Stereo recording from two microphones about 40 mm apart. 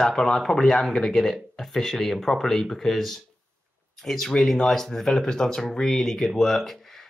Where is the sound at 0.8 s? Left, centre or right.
Centre.